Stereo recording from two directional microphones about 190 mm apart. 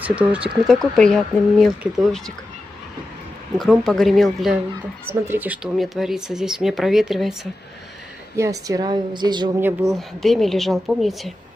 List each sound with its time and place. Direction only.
0.0 s speech: 5° right (ahead or behind)
3.5 s speech: centre (ahead or behind)
8.4 s a woman's voice: 20° right (ahead or behind)
9.6 s speech: 10° right (ahead or behind)
9.9 s speech: centre (ahead or behind)